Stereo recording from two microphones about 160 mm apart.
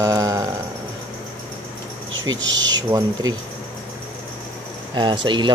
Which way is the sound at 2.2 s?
25° right (ahead or behind).